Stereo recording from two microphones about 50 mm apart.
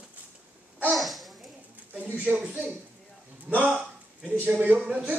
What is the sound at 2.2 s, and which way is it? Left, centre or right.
Speech, right.